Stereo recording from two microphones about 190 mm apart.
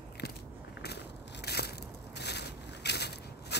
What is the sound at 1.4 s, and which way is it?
Crushing, 60° left (ahead or behind).